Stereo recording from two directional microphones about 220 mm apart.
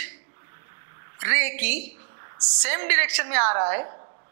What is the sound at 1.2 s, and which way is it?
A woman's voice, 15° right (ahead or behind).